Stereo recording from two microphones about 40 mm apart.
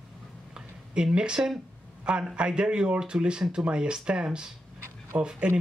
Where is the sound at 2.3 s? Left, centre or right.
Right.